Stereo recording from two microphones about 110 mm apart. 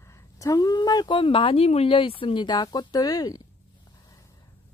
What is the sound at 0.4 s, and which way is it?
Speech, 35° left (ahead or behind).